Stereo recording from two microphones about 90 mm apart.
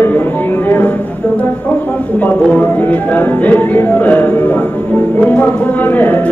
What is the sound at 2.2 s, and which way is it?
Speech, 15° left (ahead or behind).